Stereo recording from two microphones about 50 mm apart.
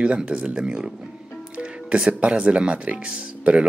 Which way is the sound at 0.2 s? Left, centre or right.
Right.